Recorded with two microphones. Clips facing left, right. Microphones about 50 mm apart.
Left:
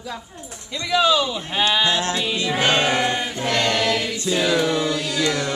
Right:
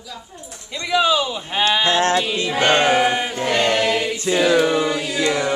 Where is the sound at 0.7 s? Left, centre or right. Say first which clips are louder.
Even; centre.